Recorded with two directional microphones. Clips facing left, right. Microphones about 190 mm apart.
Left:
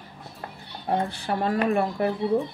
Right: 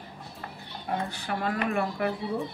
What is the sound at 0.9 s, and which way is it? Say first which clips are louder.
Speech: left 5 dB; 30° left (ahead or behind).